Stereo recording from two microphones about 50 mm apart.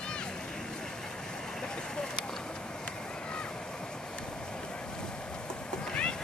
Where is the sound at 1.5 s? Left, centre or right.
Centre.